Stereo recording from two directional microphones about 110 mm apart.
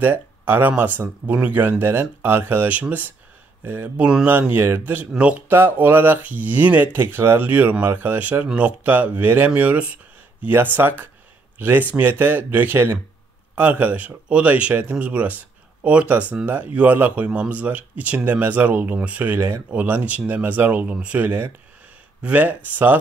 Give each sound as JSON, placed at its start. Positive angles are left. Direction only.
{"t": 0.0, "sound": "speech", "side_deg": -15}